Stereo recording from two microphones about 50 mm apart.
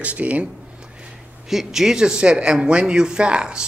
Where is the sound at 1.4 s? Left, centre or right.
Centre.